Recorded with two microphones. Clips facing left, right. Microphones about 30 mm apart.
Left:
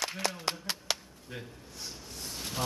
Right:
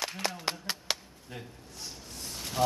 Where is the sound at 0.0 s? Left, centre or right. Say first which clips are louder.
Even; centre.